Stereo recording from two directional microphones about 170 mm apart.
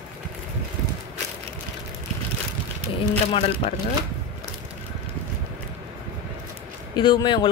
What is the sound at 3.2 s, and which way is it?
Speech, 35° left (ahead or behind).